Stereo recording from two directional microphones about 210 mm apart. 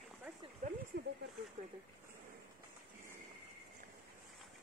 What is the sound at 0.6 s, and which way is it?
Speech, 40° right (ahead or behind).